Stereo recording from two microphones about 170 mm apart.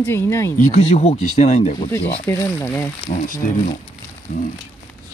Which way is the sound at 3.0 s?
50° left (ahead or behind).